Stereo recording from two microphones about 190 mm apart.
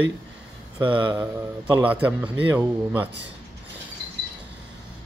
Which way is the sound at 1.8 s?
10° right (ahead or behind).